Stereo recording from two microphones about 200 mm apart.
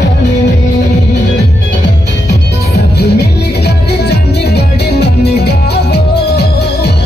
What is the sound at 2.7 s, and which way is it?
Music, 55° left (ahead or behind).